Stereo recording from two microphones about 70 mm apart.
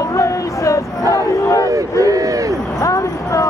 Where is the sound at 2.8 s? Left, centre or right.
Left.